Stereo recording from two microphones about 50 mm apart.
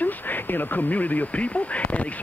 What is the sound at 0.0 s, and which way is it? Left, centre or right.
Speech, left.